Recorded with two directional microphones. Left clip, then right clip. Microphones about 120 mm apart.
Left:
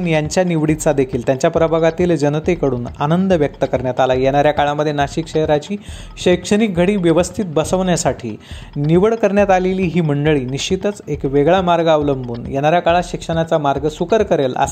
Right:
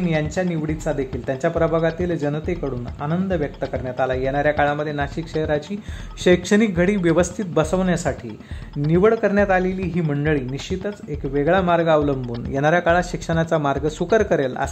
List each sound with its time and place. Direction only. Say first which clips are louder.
0.0 s speech: left 6 dB; 40° left (ahead or behind)
6.2 s speech: left 2 dB; 10° left (ahead or behind)
12.5 s speech: left 4 dB; 5° left (ahead or behind)